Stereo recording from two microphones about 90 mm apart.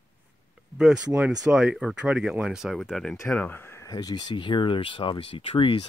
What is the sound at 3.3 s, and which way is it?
Speech, 15° left (ahead or behind).